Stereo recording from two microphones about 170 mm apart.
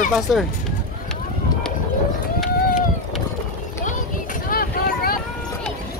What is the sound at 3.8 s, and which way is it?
Vehicle, 55° left (ahead or behind).